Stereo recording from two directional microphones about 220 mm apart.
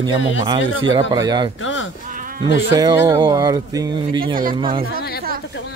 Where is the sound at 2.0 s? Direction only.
35° right (ahead or behind).